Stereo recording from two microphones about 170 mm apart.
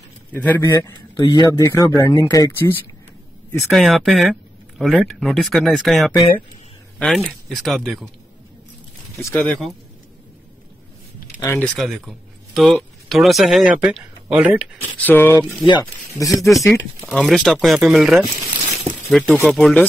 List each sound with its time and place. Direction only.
0.3 s speech: 10° left (ahead or behind)
0.7 s a man's voice: 20° left (ahead or behind)
3.5 s speech: centre (ahead or behind)
9.2 s speech: 10° left (ahead or behind)
11.3 s speech: 10° left (ahead or behind); by 14.7 s 5° right (ahead or behind)
14.8 s speech: 10° left (ahead or behind)
16.3 s speech: centre (ahead or behind)
18.9 s a sound: 5° left (ahead or behind)
19.4 s speech: centre (ahead or behind)